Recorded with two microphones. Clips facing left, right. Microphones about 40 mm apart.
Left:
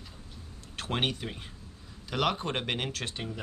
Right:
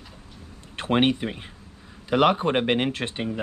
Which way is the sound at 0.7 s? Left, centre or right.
Right.